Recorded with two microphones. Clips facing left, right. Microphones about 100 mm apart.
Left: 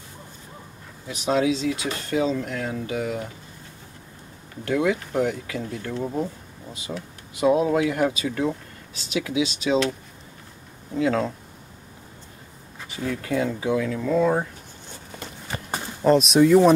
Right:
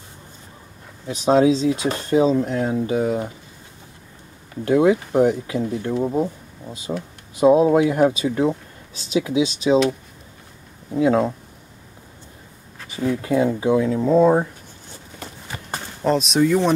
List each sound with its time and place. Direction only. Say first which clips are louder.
1.0 s speech: right 6 dB; 30° right (ahead or behind)
4.6 s speech: right 7 dB; 25° right (ahead or behind)
7.3 s speech: right 6 dB; 25° right (ahead or behind)
10.9 s speech: right 5 dB; 20° right (ahead or behind)
12.9 s speech: right 5 dB; 20° right (ahead or behind)
15.7 s speech: left 2 dB; 5° left (ahead or behind)